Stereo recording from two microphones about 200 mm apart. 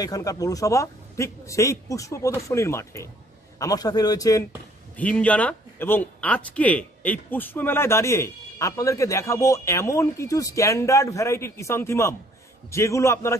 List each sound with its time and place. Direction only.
0.0 s speech: 15° left (ahead or behind)
4.9 s speech: 5° left (ahead or behind)